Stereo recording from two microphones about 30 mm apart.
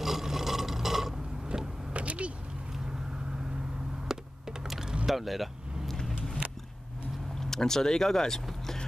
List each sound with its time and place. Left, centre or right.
0.0 s a sound: centre
1.5 s power windows: right
1.9 s vehicle: right
4.1 s computer keyboard: right
5.0 s speech: centre
5.9 s vehicle: centre
7.3 s speech: centre